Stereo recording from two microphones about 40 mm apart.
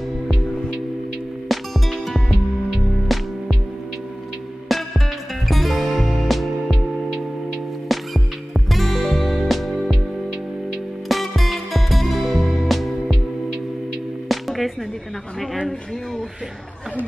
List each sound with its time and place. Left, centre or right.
1.5 s music: centre
4.6 s music: centre
11.1 s music: centre
14.3 s music: centre